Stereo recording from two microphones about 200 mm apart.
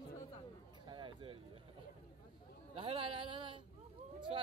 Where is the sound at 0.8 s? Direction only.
25° right (ahead or behind).